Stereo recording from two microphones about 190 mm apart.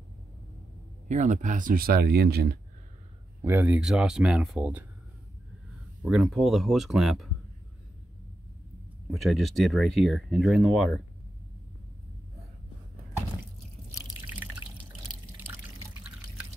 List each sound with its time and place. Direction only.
1.0 s speech: 40° right (ahead or behind); by 2.5 s 55° right (ahead or behind)
3.4 s speech: 10° right (ahead or behind)
6.0 s speech: centre (ahead or behind)
9.1 s speech: centre (ahead or behind)
15.4 s drip: 10° right (ahead or behind)